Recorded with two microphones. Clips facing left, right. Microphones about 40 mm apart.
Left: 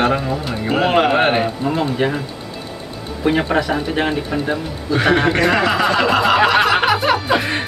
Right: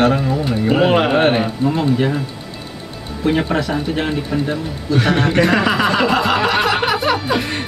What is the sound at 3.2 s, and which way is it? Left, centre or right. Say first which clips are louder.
Speech: left 1 dB; centre.